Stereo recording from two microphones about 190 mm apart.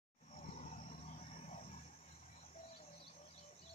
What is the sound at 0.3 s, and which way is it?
Vehicle, 35° left (ahead or behind).